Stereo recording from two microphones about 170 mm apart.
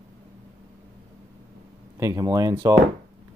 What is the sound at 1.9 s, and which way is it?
Speech, 20° right (ahead or behind).